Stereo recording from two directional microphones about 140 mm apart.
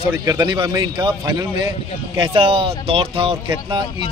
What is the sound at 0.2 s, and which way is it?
A man's voice, 30° right (ahead or behind).